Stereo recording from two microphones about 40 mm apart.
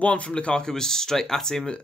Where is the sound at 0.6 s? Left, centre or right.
Centre.